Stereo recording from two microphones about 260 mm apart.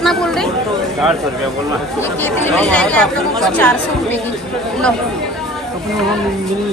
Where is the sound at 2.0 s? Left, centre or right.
Centre.